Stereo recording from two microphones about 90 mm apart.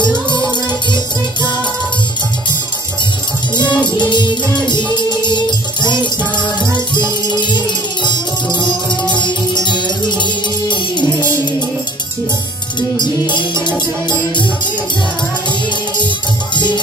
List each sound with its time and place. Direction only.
0.0 s music: 55° left (ahead or behind)
3.5 s music: 55° left (ahead or behind)
13.0 s music: 55° left (ahead or behind)
16.5 s music: 60° left (ahead or behind)